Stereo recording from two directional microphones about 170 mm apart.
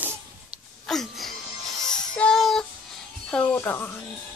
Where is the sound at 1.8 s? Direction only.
5° left (ahead or behind).